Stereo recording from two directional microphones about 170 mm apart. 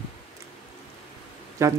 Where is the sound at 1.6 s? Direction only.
15° right (ahead or behind).